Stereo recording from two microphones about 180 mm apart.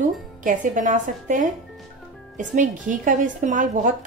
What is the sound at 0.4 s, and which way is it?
Speech, 45° right (ahead or behind).